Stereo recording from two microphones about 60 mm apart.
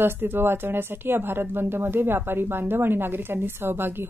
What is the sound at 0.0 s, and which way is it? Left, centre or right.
A woman's voice, right.